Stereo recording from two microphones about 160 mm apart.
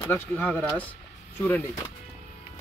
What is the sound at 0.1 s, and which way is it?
Speech, 15° left (ahead or behind).